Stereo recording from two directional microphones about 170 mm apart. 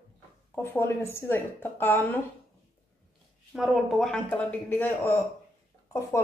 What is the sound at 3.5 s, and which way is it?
Speech, 5° right (ahead or behind).